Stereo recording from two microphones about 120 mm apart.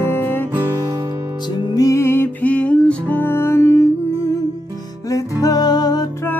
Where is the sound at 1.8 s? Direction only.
25° left (ahead or behind).